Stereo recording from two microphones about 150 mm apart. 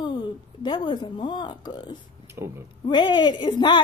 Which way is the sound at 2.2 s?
15° right (ahead or behind).